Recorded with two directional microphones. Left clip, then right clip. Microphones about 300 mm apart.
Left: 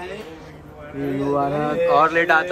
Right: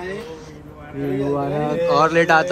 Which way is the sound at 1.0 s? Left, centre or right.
Centre.